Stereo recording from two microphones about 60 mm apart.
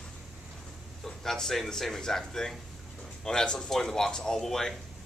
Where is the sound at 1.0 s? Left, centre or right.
Centre.